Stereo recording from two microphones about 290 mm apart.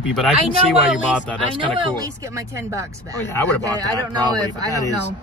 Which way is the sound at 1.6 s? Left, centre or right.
Centre.